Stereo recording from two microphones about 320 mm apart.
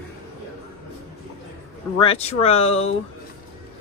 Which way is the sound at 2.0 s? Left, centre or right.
Centre.